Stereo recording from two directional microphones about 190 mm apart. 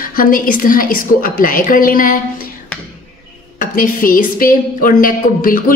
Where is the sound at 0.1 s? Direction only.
45° left (ahead or behind).